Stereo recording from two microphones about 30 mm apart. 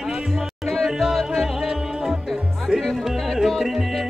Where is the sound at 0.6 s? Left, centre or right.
Centre.